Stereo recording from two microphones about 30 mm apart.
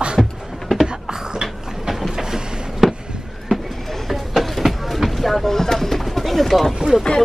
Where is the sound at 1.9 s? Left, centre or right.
Centre.